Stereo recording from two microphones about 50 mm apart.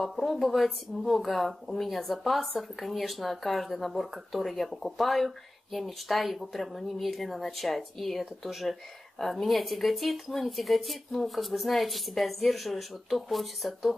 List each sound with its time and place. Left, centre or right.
0.0 s speech: centre